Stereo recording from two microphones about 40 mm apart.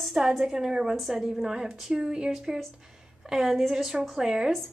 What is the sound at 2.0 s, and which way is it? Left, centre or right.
Speech, centre.